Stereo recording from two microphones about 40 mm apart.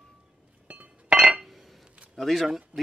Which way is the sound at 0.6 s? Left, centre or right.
Right.